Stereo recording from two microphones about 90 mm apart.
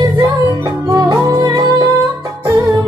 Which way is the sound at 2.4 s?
35° right (ahead or behind).